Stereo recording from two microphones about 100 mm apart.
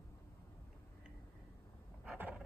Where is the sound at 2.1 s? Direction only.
15° right (ahead or behind).